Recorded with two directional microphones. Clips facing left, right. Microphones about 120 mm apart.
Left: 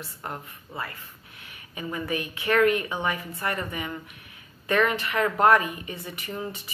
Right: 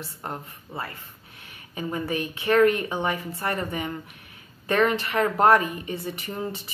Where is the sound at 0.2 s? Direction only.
30° right (ahead or behind).